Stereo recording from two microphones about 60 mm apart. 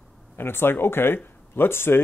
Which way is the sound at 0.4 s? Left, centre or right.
Left.